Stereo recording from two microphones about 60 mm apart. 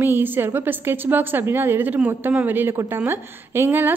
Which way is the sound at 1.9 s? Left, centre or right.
Right.